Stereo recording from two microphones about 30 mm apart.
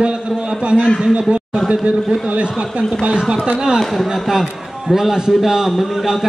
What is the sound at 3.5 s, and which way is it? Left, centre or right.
Speech, right.